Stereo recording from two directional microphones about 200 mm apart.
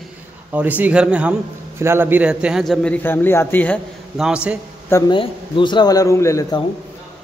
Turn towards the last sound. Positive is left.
turn(degrees=15)  # may be behind; listen again after turning